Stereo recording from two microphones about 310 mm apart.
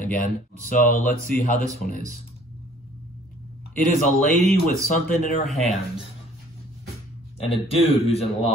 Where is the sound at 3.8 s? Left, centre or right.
Left.